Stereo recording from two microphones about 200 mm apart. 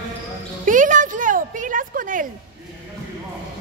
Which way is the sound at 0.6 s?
40° right (ahead or behind).